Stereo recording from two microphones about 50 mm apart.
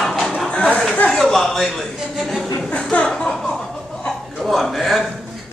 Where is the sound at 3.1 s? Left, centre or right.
Centre.